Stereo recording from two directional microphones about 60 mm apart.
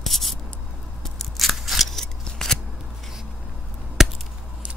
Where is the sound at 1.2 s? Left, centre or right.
Centre.